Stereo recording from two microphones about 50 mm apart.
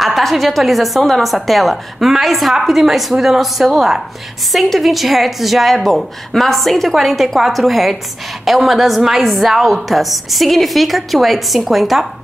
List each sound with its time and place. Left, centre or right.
0.0 s a woman's voice: centre